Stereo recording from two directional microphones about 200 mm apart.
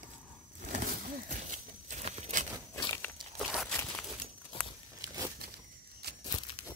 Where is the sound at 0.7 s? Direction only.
40° right (ahead or behind).